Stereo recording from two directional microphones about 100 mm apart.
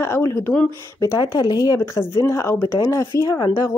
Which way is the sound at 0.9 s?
40° left (ahead or behind).